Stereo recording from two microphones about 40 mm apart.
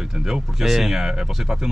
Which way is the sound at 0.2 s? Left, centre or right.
Centre.